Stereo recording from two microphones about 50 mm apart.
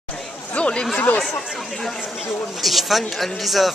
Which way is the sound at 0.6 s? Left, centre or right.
Left.